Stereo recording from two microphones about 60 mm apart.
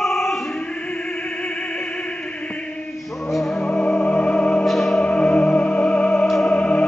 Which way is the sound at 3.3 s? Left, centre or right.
Centre.